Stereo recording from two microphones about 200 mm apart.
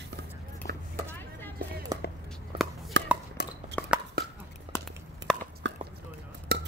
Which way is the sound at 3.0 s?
60° right (ahead or behind).